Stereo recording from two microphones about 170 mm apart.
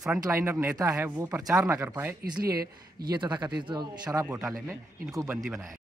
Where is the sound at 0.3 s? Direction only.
15° right (ahead or behind).